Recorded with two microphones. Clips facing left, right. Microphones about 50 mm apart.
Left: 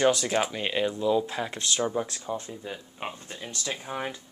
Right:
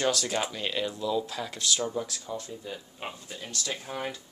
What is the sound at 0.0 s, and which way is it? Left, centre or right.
Speech, left.